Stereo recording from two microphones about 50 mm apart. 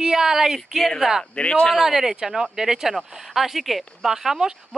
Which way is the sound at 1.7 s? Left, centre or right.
Centre.